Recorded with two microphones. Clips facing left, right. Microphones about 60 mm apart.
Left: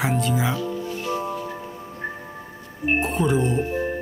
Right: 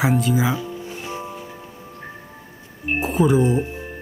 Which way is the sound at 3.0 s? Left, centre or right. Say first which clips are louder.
Right 5 dB; centre.